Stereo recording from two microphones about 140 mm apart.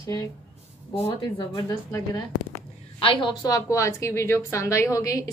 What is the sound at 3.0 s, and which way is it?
A woman's voice, 30° left (ahead or behind).